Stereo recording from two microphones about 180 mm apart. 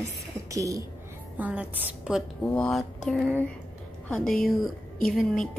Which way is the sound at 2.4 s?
5° left (ahead or behind).